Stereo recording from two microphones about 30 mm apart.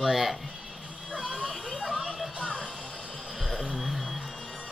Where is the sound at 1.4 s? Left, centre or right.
Centre.